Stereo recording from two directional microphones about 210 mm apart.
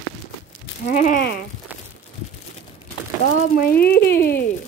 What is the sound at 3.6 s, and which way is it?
Speech, 45° left (ahead or behind).